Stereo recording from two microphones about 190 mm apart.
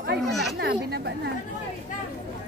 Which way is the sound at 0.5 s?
60° right (ahead or behind).